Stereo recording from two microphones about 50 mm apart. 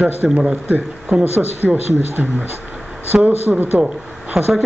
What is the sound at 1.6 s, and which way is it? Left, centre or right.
Speech, left.